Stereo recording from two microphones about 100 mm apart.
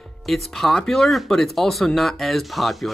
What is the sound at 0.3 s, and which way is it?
Speech, centre (ahead or behind).